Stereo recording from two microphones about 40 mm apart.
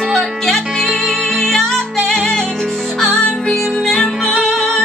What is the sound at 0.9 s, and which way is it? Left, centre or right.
Music, centre.